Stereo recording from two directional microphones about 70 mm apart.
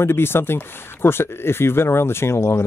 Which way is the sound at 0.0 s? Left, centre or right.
Left.